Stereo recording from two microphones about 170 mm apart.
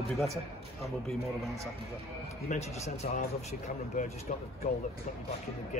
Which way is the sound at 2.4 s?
40° left (ahead or behind).